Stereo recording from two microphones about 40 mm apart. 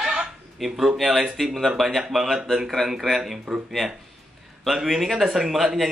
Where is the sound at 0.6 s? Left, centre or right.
Centre.